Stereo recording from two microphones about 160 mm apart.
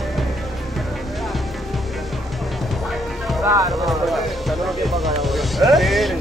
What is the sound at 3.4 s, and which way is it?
Music, 20° right (ahead or behind).